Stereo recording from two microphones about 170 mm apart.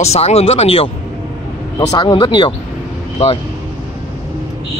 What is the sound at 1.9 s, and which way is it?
Speech, 25° left (ahead or behind).